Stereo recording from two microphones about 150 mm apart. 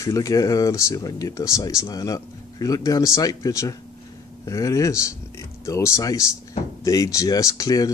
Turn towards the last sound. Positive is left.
turn(degrees=25)  # may be behind; listen again after turning